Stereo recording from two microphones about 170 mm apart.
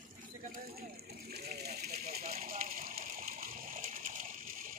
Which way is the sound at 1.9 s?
40° right (ahead or behind).